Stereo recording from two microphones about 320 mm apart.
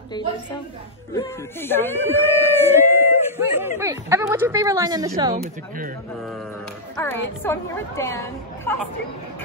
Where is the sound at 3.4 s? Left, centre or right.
Centre.